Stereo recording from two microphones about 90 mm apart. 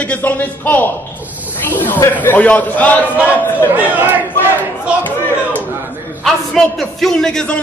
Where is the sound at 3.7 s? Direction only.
20° right (ahead or behind).